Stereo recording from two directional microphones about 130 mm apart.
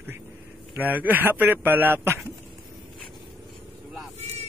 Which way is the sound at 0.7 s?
15° right (ahead or behind).